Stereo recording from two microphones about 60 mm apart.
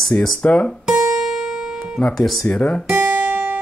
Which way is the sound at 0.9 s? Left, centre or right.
Centre.